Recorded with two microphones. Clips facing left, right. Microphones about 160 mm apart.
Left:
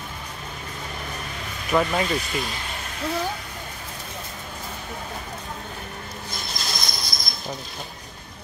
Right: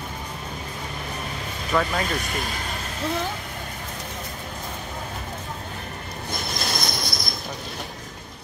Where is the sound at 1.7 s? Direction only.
10° left (ahead or behind).